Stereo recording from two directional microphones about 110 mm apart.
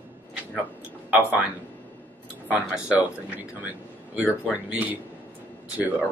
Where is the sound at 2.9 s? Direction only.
15° right (ahead or behind).